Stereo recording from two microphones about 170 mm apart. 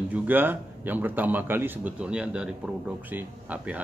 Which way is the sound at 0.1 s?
10° right (ahead or behind).